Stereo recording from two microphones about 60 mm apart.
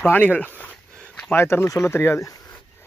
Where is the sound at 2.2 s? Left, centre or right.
Left.